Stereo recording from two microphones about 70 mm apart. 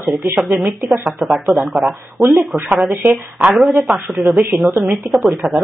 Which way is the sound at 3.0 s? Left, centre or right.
Right.